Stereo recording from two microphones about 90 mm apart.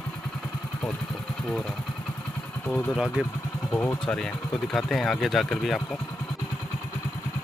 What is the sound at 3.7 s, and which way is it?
Speech, 20° left (ahead or behind).